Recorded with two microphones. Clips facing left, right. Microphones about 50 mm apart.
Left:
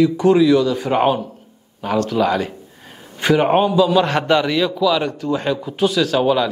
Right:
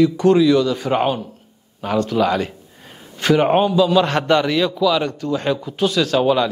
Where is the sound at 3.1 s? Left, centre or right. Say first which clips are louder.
Even; centre.